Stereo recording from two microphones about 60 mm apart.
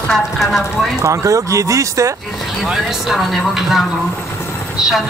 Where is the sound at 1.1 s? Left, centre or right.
Right.